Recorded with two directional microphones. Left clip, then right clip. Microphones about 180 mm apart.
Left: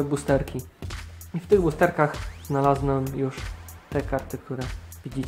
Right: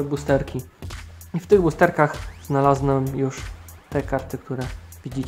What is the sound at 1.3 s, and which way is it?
Speech, 20° right (ahead or behind).